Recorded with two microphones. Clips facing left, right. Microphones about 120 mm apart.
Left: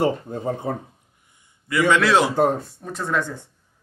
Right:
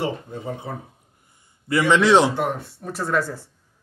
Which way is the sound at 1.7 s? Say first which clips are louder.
Right 1 dB; 25° right (ahead or behind).